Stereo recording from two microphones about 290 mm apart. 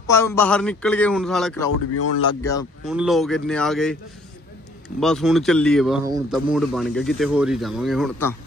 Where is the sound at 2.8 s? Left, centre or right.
Centre.